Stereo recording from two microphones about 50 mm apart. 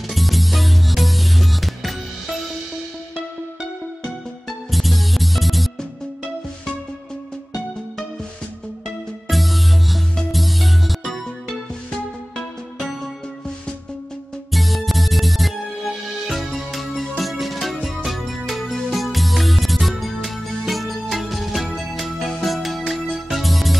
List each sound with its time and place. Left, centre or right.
0.1 s music: centre
4.0 s music: centre
8.8 s music: centre
14.5 s music: centre